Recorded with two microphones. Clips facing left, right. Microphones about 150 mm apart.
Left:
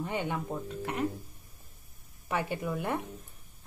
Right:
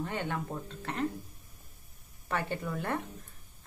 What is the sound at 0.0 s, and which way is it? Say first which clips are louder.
Speech: left 2 dB; 15° left (ahead or behind).